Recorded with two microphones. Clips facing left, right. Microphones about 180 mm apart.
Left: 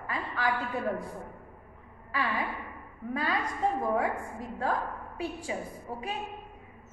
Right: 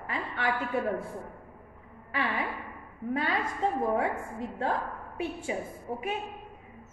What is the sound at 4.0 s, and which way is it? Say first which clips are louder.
A woman's voice: right 1 dB; 25° right (ahead or behind).